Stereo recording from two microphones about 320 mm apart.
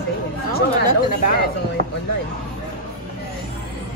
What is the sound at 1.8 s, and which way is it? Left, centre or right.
Speech, right.